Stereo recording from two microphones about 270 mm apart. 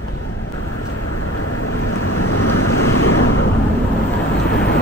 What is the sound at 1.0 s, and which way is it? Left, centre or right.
Vehicle, left.